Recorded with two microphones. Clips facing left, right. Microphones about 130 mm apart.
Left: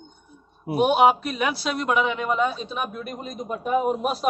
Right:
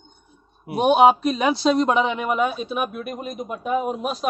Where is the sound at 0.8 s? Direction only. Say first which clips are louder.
Right 3 dB; 20° right (ahead or behind); by 4.3 s centre (ahead or behind).